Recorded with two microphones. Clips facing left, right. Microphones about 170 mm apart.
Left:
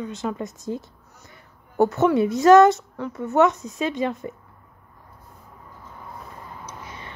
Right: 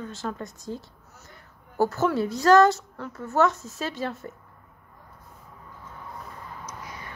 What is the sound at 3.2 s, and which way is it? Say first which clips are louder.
Speech: left 4 dB; centre (ahead or behind).